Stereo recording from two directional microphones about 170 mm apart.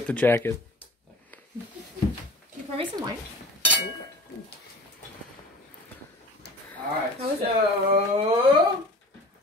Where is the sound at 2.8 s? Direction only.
25° right (ahead or behind).